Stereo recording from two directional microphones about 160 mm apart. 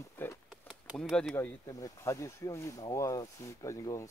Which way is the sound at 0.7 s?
Centre (ahead or behind).